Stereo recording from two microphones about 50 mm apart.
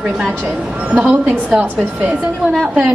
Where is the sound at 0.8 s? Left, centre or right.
Right.